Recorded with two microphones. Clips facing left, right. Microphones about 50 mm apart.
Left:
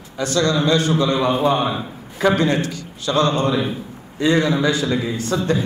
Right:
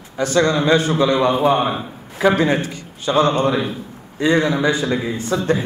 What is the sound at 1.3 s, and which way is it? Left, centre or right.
A man's voice, centre.